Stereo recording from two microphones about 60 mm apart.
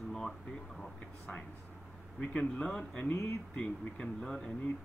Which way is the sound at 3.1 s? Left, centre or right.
Left.